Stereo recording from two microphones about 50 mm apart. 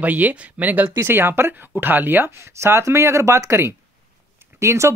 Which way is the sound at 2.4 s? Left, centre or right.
Right.